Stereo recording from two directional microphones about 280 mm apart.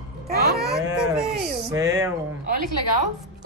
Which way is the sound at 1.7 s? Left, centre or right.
Centre.